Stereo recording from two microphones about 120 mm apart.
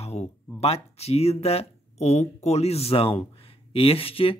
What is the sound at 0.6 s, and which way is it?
Speech, 60° left (ahead or behind).